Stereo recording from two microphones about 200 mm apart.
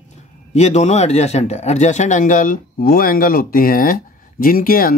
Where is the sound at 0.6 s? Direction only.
35° left (ahead or behind).